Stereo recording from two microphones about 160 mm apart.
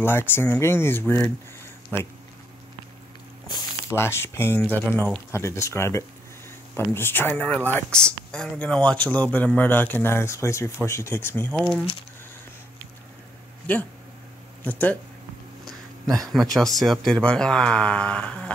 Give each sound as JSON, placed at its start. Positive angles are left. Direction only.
{"t": 0.0, "sound": "speech", "side_deg": 15}
{"t": 3.4, "sound": "speech", "side_deg": 20}
{"t": 14.6, "sound": "speech", "side_deg": 10}
{"t": 16.3, "sound": "speech", "side_deg": 0}